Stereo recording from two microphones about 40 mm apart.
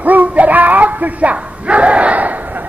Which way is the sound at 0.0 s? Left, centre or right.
Right.